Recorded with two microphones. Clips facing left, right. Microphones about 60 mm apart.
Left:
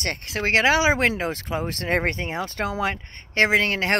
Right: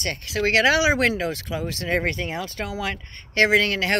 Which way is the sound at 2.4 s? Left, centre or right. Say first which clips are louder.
Left 3 dB; left.